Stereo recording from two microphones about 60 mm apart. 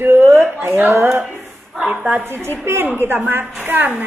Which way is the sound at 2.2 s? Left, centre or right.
Right.